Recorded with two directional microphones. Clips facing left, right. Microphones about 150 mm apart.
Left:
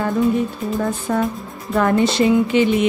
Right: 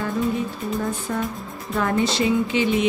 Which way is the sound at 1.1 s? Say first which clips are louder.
Left 8 dB; 90° left.